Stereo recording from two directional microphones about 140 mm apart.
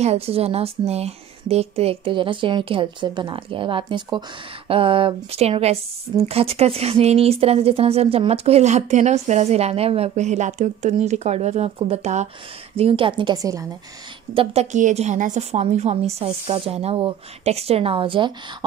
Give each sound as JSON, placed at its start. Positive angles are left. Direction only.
{"t": 0.0, "sound": "a woman's voice", "side_deg": -45}
{"t": 12.7, "sound": "speech", "side_deg": -40}
{"t": 14.3, "sound": "a woman's voice", "side_deg": -45}